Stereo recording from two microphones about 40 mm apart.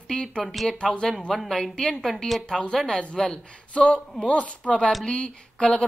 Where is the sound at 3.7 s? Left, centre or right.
Left.